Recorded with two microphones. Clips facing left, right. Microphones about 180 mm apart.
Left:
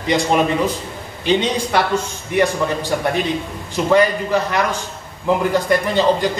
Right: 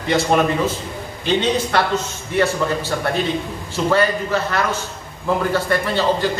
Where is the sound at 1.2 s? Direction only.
15° left (ahead or behind).